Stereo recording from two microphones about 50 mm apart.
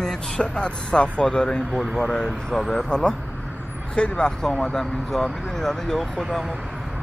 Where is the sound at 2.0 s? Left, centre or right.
Centre.